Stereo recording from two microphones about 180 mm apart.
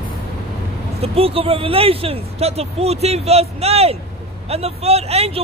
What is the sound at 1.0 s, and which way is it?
Speech, 30° right (ahead or behind).